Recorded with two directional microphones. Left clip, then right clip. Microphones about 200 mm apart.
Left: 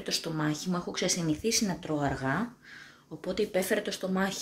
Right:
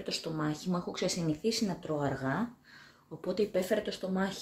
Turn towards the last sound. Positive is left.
turn(degrees=0)  # may be behind; listen again after turning